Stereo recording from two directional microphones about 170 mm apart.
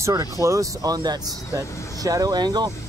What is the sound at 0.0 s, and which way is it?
Speech, 20° right (ahead or behind).